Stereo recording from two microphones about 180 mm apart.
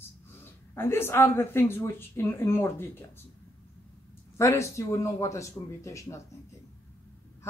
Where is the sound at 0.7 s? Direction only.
15° left (ahead or behind).